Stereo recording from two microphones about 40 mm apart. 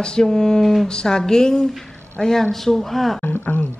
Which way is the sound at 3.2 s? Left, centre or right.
Left.